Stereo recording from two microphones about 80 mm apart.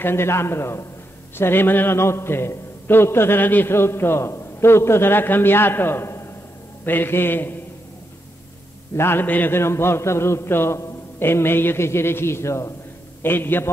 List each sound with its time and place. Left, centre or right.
0.0 s a man's voice: left
8.9 s a man's voice: left
13.2 s a man's voice: left